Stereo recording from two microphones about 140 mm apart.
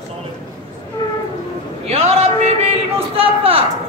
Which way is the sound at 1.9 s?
50° right (ahead or behind).